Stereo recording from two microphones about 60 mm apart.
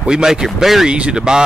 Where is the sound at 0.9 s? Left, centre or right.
Centre.